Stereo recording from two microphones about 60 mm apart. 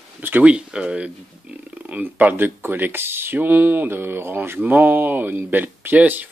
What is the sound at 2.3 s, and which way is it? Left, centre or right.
Speech, right.